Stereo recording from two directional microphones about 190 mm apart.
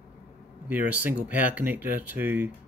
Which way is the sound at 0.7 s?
10° right (ahead or behind).